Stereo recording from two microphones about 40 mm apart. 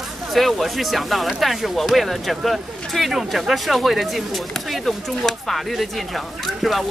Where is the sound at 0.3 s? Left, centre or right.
Centre.